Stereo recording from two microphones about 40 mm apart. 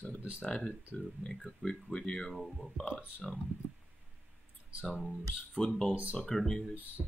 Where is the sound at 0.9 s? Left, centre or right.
Left.